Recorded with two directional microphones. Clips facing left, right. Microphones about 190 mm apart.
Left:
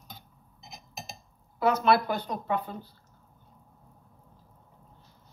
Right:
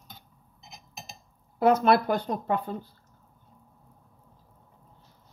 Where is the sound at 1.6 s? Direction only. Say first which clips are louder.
Right 3 dB; 50° right (ahead or behind).